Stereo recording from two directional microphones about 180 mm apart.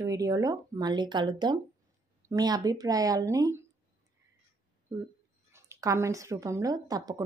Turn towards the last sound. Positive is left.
turn(degrees=-20)  # may be behind; listen again after turning